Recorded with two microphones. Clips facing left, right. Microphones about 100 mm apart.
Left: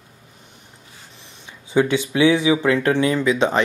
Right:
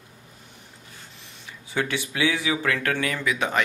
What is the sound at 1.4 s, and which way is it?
Speech, 20° left (ahead or behind).